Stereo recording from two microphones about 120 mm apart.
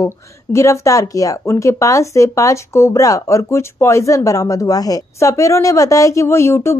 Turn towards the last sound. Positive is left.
turn(degrees=20)  # may be behind; listen again after turning